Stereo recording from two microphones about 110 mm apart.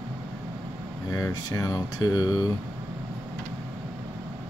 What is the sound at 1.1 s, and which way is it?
Speech, 35° left (ahead or behind).